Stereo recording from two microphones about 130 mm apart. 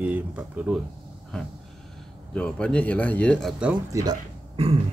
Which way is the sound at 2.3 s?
5° left (ahead or behind).